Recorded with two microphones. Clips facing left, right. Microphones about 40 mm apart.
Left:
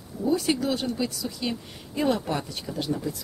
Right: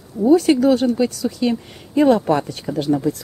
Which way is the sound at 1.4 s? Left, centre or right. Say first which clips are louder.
Right 11 dB; right.